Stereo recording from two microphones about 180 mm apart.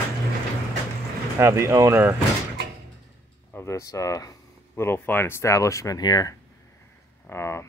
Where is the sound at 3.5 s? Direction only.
15° left (ahead or behind).